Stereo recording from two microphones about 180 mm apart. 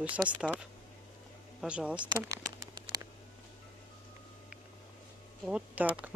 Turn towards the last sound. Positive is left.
turn(degrees=-5)  # may be behind; listen again after turning